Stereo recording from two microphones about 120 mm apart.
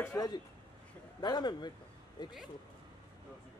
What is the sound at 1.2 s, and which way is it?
Speech, 35° left (ahead or behind).